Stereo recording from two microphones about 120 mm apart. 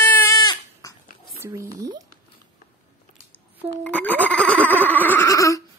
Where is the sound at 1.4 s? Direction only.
25° right (ahead or behind).